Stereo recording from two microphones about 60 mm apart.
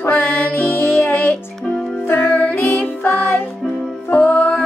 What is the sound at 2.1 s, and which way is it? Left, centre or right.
Music, left.